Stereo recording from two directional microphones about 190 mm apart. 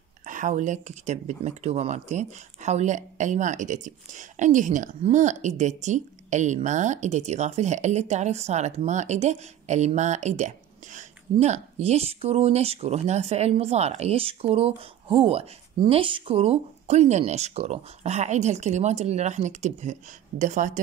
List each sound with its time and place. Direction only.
0.2 s speech: 40° right (ahead or behind)